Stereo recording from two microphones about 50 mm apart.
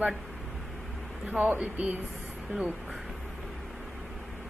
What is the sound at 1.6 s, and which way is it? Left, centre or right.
Speech, right.